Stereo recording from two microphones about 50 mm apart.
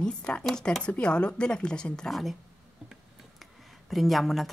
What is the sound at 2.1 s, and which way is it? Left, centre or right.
Speech, centre.